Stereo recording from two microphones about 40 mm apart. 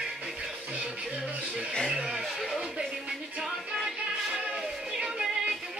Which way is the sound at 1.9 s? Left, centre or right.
Centre.